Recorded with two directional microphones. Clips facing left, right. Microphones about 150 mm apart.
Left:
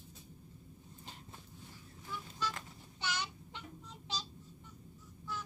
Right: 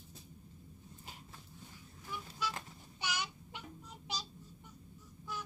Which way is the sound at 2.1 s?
15° right (ahead or behind).